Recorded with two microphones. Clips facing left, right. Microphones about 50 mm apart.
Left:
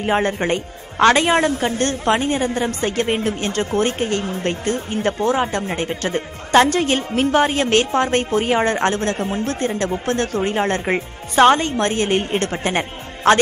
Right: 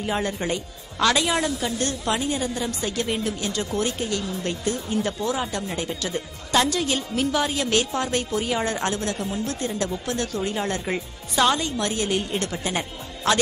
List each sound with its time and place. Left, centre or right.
0.0 s a woman's voice: left